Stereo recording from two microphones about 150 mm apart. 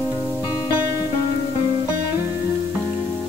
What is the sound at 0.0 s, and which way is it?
Music, 20° left (ahead or behind).